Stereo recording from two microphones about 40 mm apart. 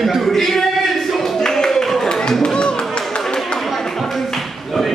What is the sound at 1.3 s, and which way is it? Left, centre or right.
Clapping, centre.